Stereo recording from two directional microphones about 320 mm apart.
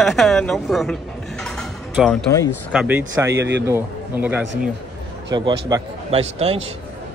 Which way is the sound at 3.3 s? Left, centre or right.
Right.